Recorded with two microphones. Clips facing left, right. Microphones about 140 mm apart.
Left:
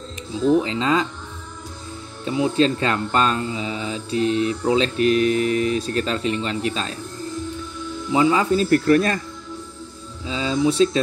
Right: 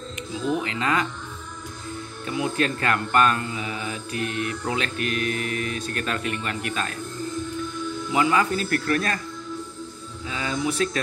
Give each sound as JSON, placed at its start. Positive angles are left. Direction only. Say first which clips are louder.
{"t": 0.5, "sound": "speech", "louder": "left 7 dB", "side_deg": 25}
{"t": 2.2, "sound": "speech", "louder": "left 6 dB", "side_deg": 25}
{"t": 5.2, "sound": "mantra", "louder": "left 9 dB", "side_deg": -45}
{"t": 5.5, "sound": "speech", "louder": "left 8 dB", "side_deg": 30}
{"t": 8.1, "sound": "speech", "louder": "left 4 dB", "side_deg": 25}
{"t": 10.2, "sound": "speech", "louder": "left 6 dB", "side_deg": 20}